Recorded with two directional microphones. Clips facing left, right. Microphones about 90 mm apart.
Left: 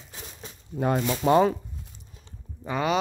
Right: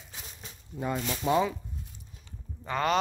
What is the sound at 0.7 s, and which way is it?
Speech, 70° left (ahead or behind).